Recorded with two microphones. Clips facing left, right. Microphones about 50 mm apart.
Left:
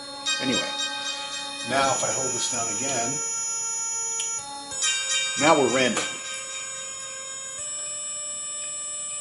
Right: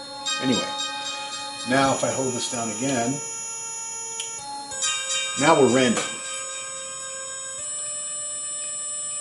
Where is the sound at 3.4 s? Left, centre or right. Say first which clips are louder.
Left 2 dB; centre.